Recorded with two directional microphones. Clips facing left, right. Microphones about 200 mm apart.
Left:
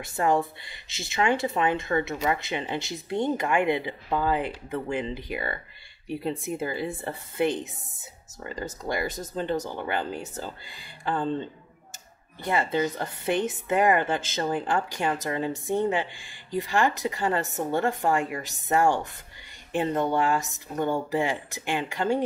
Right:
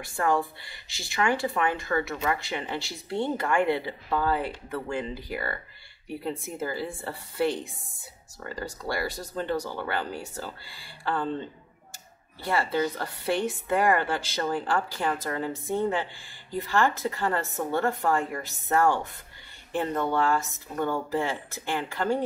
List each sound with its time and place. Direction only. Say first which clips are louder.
0.0 s speech: left 2 dB; 20° left (ahead or behind)
12.4 s a woman's voice: left 1 dB; 20° left (ahead or behind)